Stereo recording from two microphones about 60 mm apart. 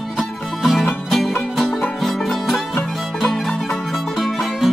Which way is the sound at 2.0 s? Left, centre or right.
Centre.